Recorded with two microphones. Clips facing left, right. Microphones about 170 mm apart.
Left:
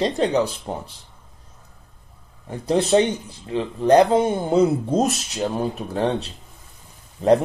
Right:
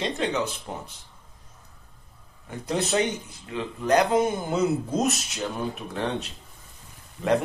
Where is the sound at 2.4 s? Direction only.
30° left (ahead or behind).